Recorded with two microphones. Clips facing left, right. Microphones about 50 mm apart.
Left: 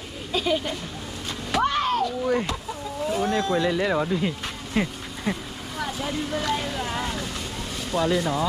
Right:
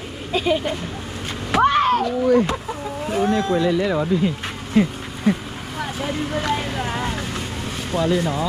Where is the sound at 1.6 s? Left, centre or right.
Right.